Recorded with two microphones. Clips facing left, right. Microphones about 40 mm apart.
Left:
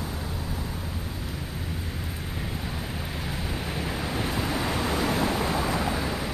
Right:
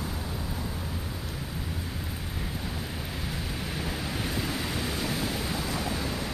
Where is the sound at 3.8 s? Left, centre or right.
Centre.